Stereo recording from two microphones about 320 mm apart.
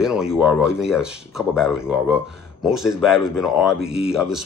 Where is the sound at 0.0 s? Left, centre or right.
Centre.